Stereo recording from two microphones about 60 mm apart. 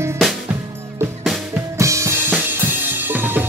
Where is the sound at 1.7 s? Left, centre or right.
Right.